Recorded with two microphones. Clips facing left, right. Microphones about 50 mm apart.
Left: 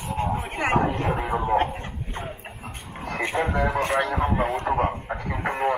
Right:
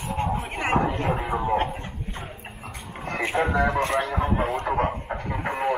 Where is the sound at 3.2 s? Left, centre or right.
Centre.